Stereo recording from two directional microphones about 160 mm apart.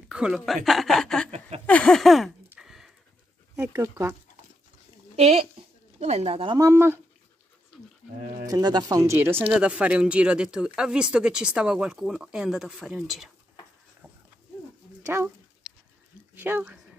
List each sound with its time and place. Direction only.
0.1 s speech: 5° right (ahead or behind)
2.5 s a sound: 5° right (ahead or behind)
3.5 s speech: 15° right (ahead or behind)
5.1 s speech: 40° right (ahead or behind)
6.7 s speech: 15° right (ahead or behind)
8.5 s speech: 25° right (ahead or behind)
9.5 s speech: 5° right (ahead or behind)
16.3 s speech: 15° right (ahead or behind)